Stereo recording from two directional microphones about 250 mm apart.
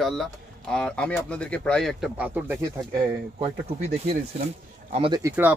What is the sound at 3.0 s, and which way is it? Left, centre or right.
Speech, centre.